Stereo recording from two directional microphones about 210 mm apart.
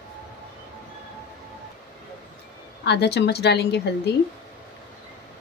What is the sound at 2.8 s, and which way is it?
Speech, 50° left (ahead or behind).